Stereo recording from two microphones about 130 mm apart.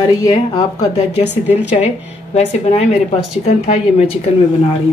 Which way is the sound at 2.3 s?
55° left (ahead or behind).